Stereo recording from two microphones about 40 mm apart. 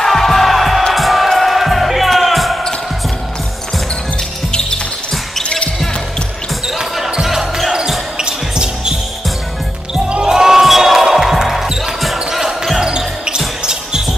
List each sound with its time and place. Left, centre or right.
0.0 s music: centre
4.5 s music: centre
5.4 s basketball bounce: left
6.8 s basketball bounce: centre
10.2 s basketball bounce: centre